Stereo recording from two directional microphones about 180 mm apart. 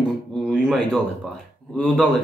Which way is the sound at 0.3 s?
Centre (ahead or behind).